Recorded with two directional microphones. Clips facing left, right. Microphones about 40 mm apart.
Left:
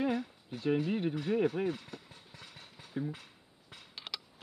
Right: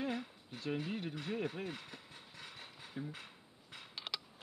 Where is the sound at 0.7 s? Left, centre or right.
Centre.